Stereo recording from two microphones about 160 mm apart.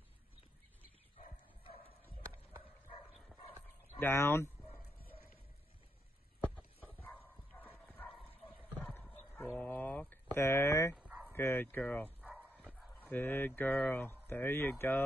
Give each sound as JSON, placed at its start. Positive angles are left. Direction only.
{"t": 3.1, "sound": "dog", "side_deg": 0}
{"t": 4.0, "sound": "speech", "side_deg": 15}
{"t": 6.4, "sound": "clip-clop", "side_deg": 10}
{"t": 8.8, "sound": "a sound", "side_deg": 10}
{"t": 11.0, "sound": "dog", "side_deg": -5}
{"t": 11.3, "sound": "speech", "side_deg": 15}
{"t": 12.2, "sound": "dog", "side_deg": -10}
{"t": 13.0, "sound": "speech", "side_deg": 10}